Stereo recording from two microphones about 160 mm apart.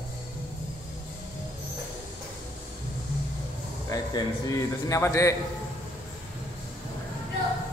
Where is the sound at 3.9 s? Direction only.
20° left (ahead or behind).